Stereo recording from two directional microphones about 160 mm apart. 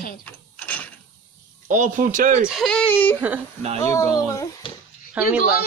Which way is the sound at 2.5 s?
5° left (ahead or behind).